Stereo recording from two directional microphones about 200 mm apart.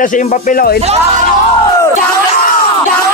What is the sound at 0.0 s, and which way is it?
Speech, 40° left (ahead or behind).